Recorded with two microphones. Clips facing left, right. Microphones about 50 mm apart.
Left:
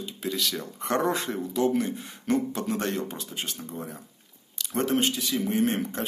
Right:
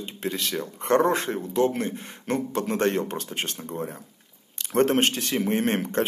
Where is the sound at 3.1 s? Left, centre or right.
Right.